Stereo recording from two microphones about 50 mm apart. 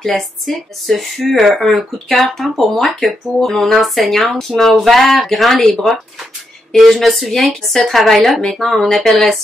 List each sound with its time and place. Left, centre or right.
0.1 s speech: centre